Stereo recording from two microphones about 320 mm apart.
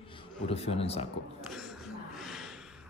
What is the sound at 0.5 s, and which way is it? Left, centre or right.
Speech, centre.